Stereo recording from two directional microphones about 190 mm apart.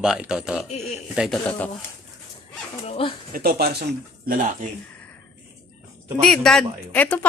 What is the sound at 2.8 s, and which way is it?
Speech, 30° left (ahead or behind).